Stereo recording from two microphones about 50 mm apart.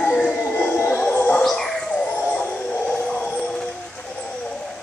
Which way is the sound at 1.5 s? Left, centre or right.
Centre.